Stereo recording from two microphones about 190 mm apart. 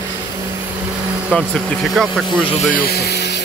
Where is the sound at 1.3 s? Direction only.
Centre (ahead or behind).